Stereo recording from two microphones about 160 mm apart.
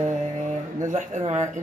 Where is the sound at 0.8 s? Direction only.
50° right (ahead or behind).